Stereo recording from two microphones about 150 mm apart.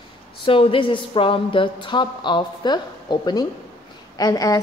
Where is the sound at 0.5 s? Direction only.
35° left (ahead or behind).